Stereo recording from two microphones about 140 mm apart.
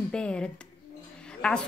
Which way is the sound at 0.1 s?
5° left (ahead or behind).